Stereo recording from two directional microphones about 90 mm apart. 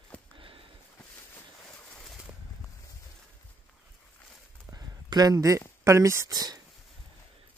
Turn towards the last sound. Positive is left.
turn(degrees=-50)  # may be behind; listen again after turning